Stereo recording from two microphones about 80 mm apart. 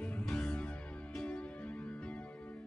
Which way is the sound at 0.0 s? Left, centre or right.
Centre.